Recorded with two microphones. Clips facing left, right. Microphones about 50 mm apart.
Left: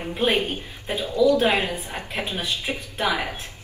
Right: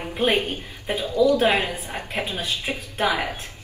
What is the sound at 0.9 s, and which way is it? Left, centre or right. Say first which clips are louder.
Speech: even; right.